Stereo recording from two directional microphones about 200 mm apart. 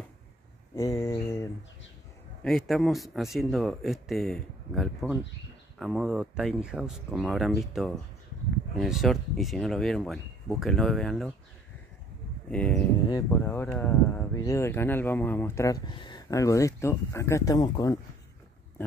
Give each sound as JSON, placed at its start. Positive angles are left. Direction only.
{"t": 0.7, "sound": "a sound", "side_deg": 15}
{"t": 2.4, "sound": "speech", "side_deg": 0}
{"t": 12.4, "sound": "speech", "side_deg": 5}